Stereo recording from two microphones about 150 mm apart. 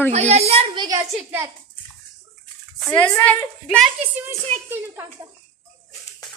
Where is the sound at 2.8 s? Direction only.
5° left (ahead or behind).